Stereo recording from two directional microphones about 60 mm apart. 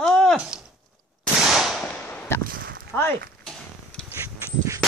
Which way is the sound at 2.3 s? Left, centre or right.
Left.